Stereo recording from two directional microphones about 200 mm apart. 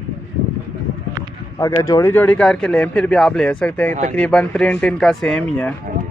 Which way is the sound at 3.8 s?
40° right (ahead or behind).